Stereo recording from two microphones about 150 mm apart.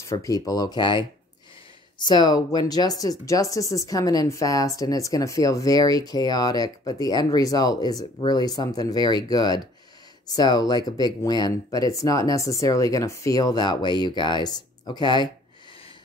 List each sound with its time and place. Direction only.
0.0 s speech: 20° left (ahead or behind)